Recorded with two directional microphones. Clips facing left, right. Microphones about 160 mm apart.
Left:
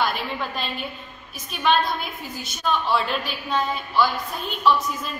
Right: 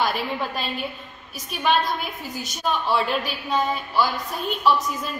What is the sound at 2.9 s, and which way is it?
A woman's voice, 10° right (ahead or behind).